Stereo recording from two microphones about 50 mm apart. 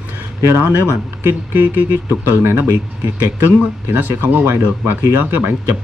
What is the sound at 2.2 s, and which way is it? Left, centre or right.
Speech, right.